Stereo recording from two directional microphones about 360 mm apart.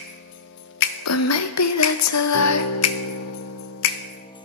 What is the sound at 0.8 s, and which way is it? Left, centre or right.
Music, left.